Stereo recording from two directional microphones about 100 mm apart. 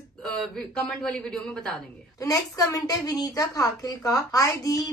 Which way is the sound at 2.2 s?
35° left (ahead or behind).